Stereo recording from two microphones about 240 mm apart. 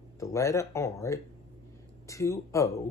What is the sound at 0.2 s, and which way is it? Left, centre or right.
Speech, centre.